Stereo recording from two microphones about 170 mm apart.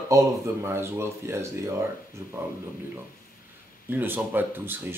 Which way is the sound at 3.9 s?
10° right (ahead or behind).